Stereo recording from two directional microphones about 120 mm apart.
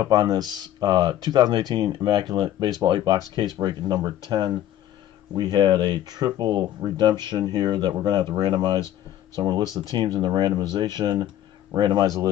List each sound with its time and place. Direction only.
0.0 s speech: 35° right (ahead or behind)